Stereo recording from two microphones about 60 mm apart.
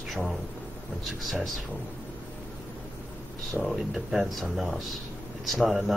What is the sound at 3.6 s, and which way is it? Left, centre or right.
Speech, centre.